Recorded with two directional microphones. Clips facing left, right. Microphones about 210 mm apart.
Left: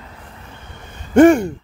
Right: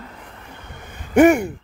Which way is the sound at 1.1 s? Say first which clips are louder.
Left 3 dB; 10° right (ahead or behind).